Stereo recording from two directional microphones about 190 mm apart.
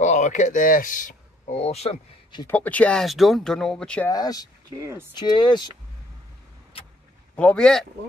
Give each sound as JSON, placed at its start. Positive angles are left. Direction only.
{"t": 0.0, "sound": "speech", "side_deg": 40}
{"t": 1.6, "sound": "speech", "side_deg": 35}
{"t": 2.4, "sound": "speech", "side_deg": 10}
{"t": 4.1, "sound": "speech", "side_deg": 20}
{"t": 4.6, "sound": "speech", "side_deg": -15}
{"t": 5.1, "sound": "speech", "side_deg": 25}
{"t": 7.3, "sound": "speech", "side_deg": 5}